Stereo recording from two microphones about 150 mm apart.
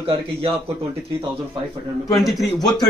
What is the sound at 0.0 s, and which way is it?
Speech, 35° right (ahead or behind).